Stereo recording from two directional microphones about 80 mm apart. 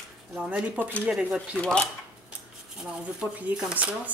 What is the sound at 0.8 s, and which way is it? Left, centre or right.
Speech, centre.